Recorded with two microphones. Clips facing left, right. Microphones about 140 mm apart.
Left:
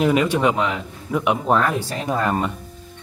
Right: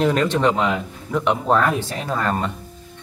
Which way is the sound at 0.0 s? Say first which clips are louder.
Even; 10° left (ahead or behind).